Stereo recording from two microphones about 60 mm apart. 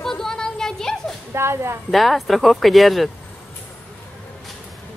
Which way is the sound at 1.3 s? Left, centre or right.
Right.